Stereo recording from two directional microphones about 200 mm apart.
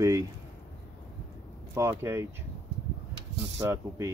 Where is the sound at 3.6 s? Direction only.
15° right (ahead or behind).